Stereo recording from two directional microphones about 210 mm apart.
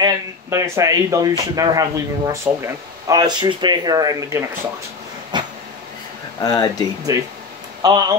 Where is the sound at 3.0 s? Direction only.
20° right (ahead or behind).